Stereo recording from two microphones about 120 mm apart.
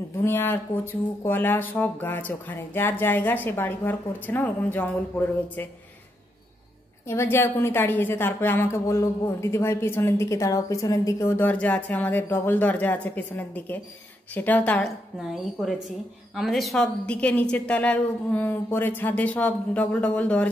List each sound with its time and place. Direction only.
0.2 s speech: 20° left (ahead or behind)
7.1 s a woman's voice: 20° left (ahead or behind)
15.1 s a woman's voice: centre (ahead or behind)